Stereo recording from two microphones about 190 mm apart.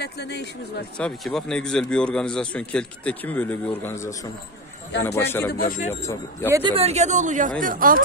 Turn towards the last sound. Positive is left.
turn(degrees=-45)  # may be behind; listen again after turning